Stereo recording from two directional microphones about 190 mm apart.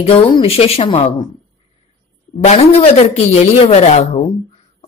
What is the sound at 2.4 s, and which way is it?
Speech, 35° left (ahead or behind).